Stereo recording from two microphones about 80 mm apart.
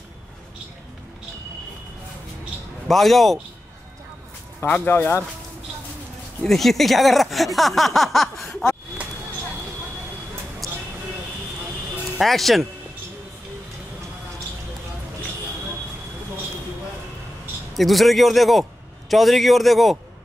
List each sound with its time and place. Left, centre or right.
2.9 s a man's voice: centre
4.6 s speech: left
6.4 s a man's voice: centre
10.6 s a sound: centre
12.2 s a man's voice: centre
17.7 s a man's voice: centre